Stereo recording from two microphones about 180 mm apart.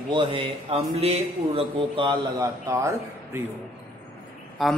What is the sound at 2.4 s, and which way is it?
Speech, 15° right (ahead or behind).